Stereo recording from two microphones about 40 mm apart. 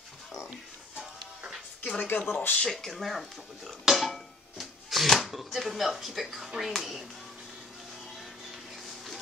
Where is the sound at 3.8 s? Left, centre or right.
Centre.